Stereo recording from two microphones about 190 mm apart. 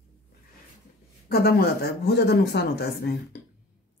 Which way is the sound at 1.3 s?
55° left (ahead or behind).